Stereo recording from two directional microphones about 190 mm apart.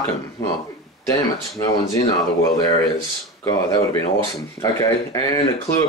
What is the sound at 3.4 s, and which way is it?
Speech, 20° left (ahead or behind).